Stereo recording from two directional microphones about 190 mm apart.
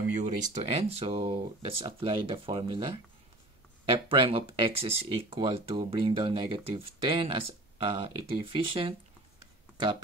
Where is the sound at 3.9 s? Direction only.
30° right (ahead or behind).